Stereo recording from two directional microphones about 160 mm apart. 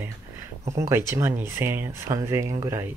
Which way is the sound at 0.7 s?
20° right (ahead or behind).